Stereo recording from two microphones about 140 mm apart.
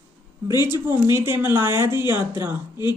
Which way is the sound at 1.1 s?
20° right (ahead or behind).